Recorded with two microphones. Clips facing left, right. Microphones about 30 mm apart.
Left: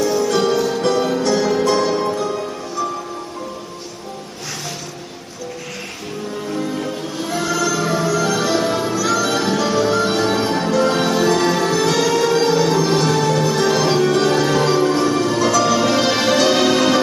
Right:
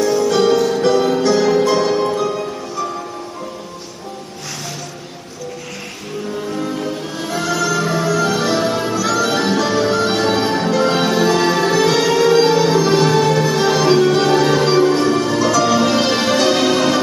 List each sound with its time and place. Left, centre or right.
0.0 s music: centre
6.4 s music: centre